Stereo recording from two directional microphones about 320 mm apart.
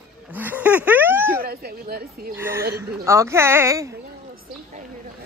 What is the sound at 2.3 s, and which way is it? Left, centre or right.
Speech, centre.